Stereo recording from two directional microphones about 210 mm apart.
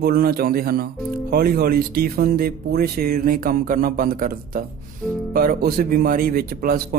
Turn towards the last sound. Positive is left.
turn(degrees=-45)  # may be behind; listen again after turning